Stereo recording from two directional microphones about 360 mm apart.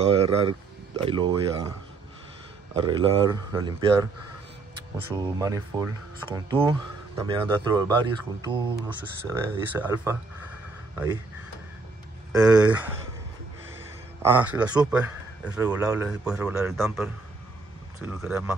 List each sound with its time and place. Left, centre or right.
0.0 s speech: centre
2.7 s speech: centre
4.9 s speech: centre
12.3 s a man's voice: centre
14.2 s a man's voice: centre